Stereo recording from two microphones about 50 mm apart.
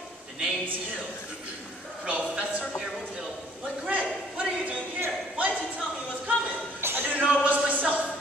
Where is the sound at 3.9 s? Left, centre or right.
Right.